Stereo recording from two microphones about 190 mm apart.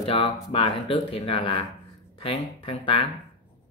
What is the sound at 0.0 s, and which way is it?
Speech, 30° left (ahead or behind).